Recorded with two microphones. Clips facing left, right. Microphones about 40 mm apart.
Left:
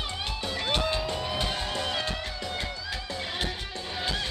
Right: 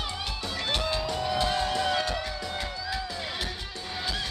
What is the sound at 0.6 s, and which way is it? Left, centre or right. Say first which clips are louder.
Music: left 1 dB; centre.